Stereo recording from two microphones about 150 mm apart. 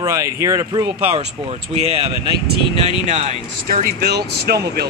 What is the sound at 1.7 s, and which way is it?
Speech, 45° right (ahead or behind).